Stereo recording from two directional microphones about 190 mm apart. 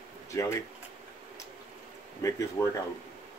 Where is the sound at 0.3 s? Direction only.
15° left (ahead or behind).